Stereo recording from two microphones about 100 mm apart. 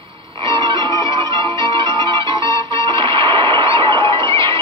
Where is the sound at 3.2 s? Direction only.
55° right (ahead or behind).